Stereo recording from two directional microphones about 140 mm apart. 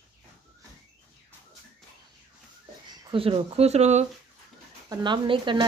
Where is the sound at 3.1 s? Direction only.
40° right (ahead or behind).